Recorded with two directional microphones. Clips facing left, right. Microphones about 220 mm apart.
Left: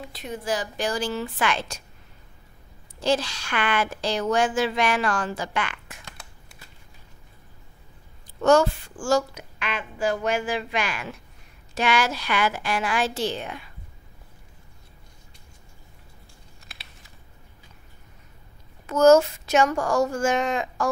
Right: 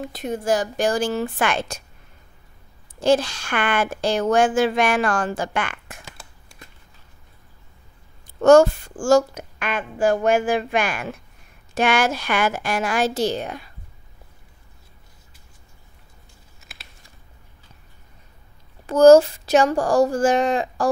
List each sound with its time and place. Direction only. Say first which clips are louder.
0.0 s a woman's voice: right 7 dB; 50° right (ahead or behind)
3.0 s a woman's voice: right 6 dB; 50° right (ahead or behind)
8.4 s a woman's voice: right 6 dB; 50° right (ahead or behind)
18.9 s a woman's voice: right 5 dB; 35° right (ahead or behind)